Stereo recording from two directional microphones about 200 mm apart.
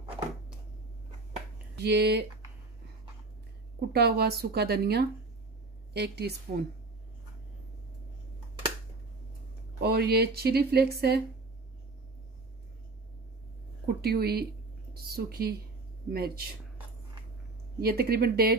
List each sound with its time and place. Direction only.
1.8 s speech: 55° right (ahead or behind)
3.9 s speech: 50° right (ahead or behind)
9.8 s speech: 55° right (ahead or behind)
14.0 s speech: 50° right (ahead or behind)
17.7 s speech: 50° right (ahead or behind)